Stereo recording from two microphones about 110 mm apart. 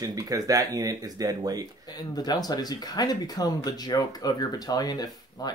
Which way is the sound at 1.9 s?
35° left (ahead or behind).